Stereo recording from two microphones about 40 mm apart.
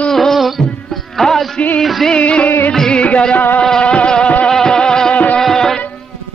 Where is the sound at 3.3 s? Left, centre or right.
Left.